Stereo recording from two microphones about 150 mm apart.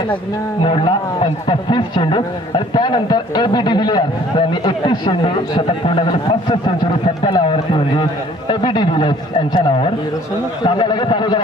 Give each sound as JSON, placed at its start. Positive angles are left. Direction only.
{"t": 0.6, "sound": "a man's voice", "side_deg": 35}